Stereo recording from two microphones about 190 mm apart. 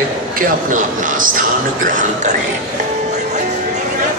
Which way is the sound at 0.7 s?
45° right (ahead or behind).